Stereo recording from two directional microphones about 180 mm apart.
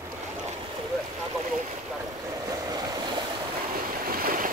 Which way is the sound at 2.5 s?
20° right (ahead or behind).